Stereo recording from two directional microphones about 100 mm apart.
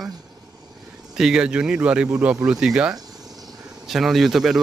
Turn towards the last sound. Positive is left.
turn(degrees=-5)  # may be behind; listen again after turning